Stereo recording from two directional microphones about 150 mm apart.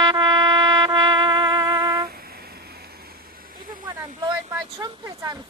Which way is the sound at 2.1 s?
90° right.